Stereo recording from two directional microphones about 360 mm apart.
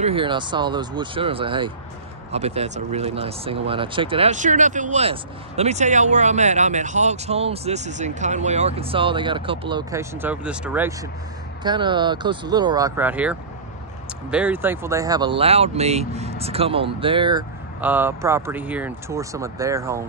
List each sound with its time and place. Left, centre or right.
0.0 s speech: centre